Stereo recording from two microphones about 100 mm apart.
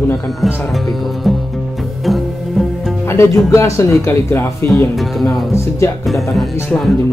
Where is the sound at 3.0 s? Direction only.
30° left (ahead or behind).